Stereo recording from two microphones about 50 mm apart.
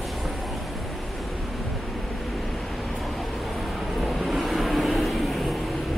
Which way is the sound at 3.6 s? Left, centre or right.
Centre.